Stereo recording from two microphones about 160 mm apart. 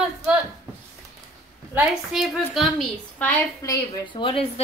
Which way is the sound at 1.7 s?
5° right (ahead or behind).